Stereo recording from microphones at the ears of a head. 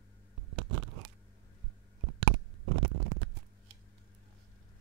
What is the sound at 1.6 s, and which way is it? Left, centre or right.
Stomach rumble, right.